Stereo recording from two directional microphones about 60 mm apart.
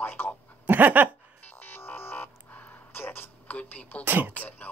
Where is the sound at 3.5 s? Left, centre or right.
Left.